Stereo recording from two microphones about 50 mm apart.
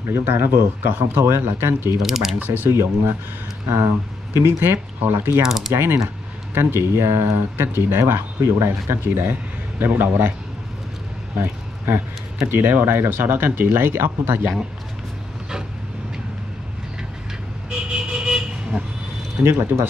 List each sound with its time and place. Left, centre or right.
0.0 s speech: right
2.0 s speech: centre
2.3 s speech: right
2.7 s speech: right
5.0 s speech: right
5.4 s a sound: centre
5.7 s speech: right
9.0 s speech: right
12.4 s speech: right
17.6 s vehicle: centre
19.4 s speech: right